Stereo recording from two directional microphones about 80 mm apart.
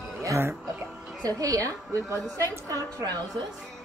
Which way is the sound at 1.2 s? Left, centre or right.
Right.